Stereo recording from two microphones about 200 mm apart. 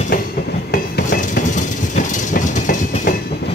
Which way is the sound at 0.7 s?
45° left (ahead or behind).